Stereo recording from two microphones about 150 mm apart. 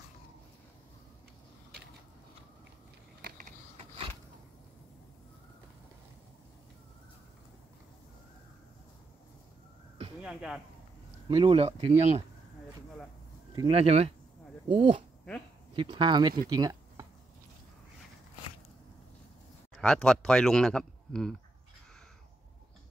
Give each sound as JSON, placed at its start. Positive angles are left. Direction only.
{"t": 3.2, "sound": "a sound", "side_deg": -80}
{"t": 10.2, "sound": "speech", "side_deg": -5}
{"t": 11.2, "sound": "speech", "side_deg": -35}
{"t": 13.7, "sound": "speech", "side_deg": -45}
{"t": 16.4, "sound": "a sound", "side_deg": -25}
{"t": 19.7, "sound": "speech", "side_deg": 5}